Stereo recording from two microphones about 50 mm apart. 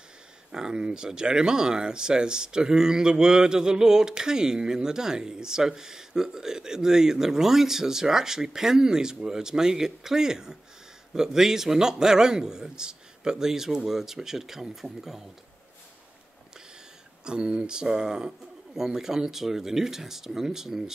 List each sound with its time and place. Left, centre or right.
0.5 s speech: centre
17.2 s speech: centre